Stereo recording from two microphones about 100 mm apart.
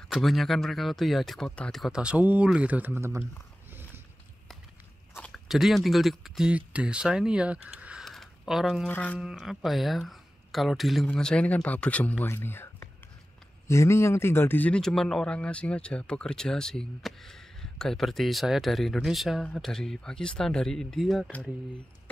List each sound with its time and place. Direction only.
0.1 s speech: centre (ahead or behind)
1.8 s speech: 5° right (ahead or behind); by 3.3 s 25° right (ahead or behind)
5.3 s speech: centre (ahead or behind)
8.0 s a sound: centre (ahead or behind)
8.8 s speech: 15° left (ahead or behind)
9.2 s speech: 5° right (ahead or behind); by 14.8 s 20° left (ahead or behind)
14.8 s speech: 5° left (ahead or behind)
21.3 s speech: 15° left (ahead or behind)